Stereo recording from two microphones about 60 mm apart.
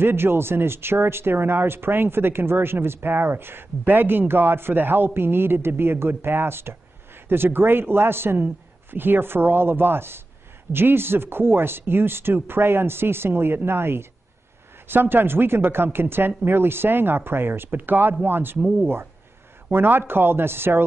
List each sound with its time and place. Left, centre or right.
0.0 s speech: right
18.6 s speech: right
19.7 s speech: right